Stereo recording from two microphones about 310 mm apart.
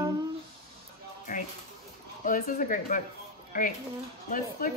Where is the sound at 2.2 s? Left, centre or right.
Left.